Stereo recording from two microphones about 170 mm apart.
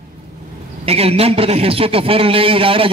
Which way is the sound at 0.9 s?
35° right (ahead or behind).